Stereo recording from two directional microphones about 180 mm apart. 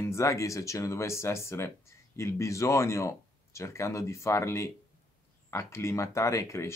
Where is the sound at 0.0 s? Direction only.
15° left (ahead or behind).